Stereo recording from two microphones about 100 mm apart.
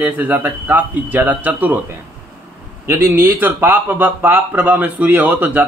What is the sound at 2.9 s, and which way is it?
A man's voice, 25° right (ahead or behind).